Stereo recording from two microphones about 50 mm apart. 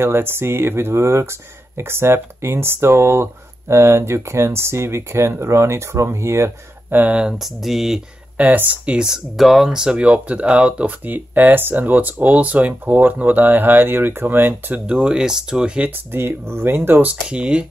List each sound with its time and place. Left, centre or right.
0.0 s speech: right
1.8 s speech: right
7.1 s speech: right
7.3 s speech: centre
8.4 s speech: right
8.9 s speech: centre
10.0 s speech: right
11.1 s speech: right
14.9 s speech: centre
16.1 s speech: right
17.0 s speech: right